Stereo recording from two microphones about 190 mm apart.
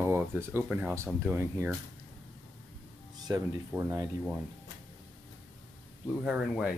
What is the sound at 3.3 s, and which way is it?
Speech, 15° right (ahead or behind).